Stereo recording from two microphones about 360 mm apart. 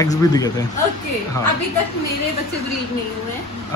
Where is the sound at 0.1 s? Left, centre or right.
Centre.